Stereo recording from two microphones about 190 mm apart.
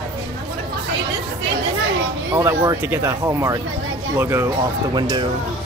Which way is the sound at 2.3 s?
10° right (ahead or behind).